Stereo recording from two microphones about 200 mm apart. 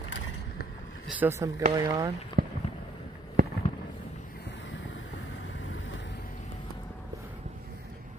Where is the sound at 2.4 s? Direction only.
55° right (ahead or behind).